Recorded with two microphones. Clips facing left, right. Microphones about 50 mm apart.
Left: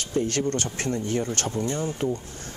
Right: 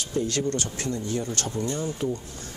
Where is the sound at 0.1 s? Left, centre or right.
Left.